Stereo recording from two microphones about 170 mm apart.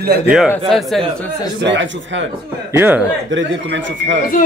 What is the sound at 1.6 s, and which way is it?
Speech, 90° right.